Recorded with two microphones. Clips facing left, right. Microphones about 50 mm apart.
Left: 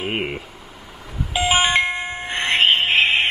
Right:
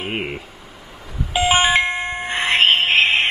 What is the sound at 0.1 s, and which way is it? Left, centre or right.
Speech, centre.